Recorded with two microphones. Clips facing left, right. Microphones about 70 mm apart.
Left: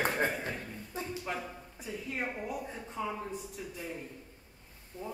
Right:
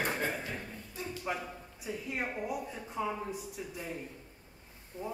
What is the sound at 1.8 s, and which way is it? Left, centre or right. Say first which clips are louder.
A woman's voice: even; centre.